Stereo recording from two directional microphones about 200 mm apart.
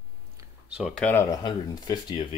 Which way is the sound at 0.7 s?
5° right (ahead or behind).